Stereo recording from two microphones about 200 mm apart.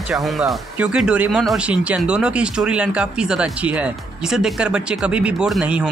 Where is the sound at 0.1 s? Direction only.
Centre (ahead or behind).